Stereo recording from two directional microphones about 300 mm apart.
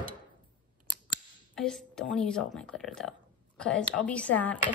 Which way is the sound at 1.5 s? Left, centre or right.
Centre.